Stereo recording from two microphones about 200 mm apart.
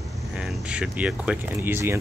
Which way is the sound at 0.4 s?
5° right (ahead or behind).